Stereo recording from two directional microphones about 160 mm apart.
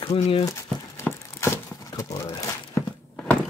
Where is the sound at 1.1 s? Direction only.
10° left (ahead or behind).